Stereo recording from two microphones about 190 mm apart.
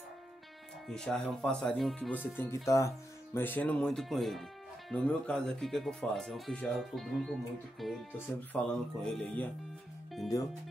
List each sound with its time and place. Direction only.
0.8 s speech: 5° left (ahead or behind)
10.3 s speech: 15° left (ahead or behind)